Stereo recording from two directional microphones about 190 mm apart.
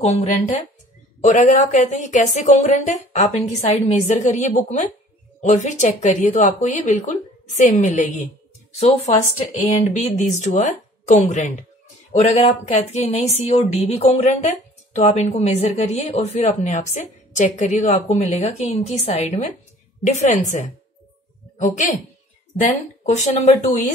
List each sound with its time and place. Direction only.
0.0 s speech: 35° left (ahead or behind)
23.0 s speech: 40° left (ahead or behind)